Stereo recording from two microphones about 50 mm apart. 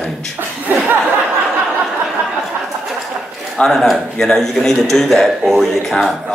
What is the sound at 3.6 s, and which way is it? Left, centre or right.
Speech, centre.